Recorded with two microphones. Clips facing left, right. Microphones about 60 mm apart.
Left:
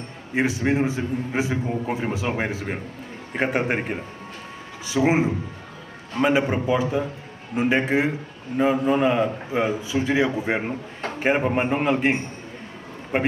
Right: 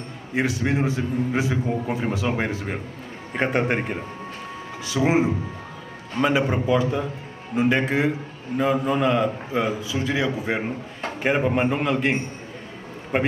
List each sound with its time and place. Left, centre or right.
0.3 s a man's voice: left
4.8 s a man's voice: left